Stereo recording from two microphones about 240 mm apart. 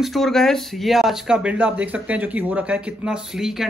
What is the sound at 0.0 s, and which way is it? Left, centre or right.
Speech, centre.